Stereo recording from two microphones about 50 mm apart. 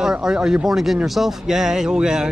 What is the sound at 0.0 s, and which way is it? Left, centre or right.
Speech, centre.